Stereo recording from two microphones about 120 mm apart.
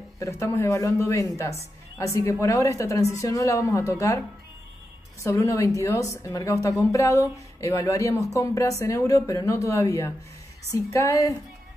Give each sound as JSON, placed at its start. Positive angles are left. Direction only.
{"t": 0.2, "sound": "speech", "side_deg": 25}
{"t": 5.2, "sound": "speech", "side_deg": 25}